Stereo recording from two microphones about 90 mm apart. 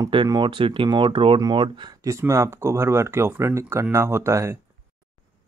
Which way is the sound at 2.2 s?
30° right (ahead or behind).